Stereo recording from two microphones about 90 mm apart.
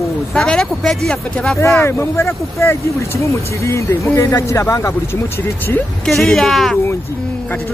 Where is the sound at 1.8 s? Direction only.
30° left (ahead or behind).